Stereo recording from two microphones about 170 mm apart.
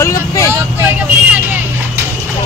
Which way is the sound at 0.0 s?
15° left (ahead or behind).